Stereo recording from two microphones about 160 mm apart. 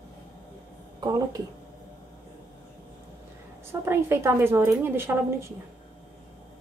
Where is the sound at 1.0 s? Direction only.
25° right (ahead or behind).